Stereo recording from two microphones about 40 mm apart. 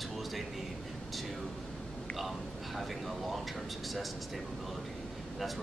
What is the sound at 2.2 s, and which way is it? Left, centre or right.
Speech, centre.